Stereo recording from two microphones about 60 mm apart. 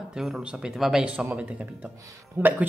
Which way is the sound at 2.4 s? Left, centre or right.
Right.